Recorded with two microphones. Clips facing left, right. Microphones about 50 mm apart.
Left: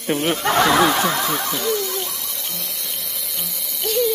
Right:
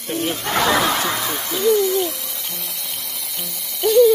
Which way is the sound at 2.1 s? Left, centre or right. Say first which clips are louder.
Right 2 dB; centre.